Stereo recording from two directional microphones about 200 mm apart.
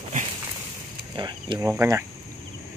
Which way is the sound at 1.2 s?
20° right (ahead or behind).